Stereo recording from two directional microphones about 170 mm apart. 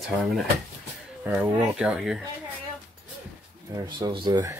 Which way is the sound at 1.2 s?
10° right (ahead or behind).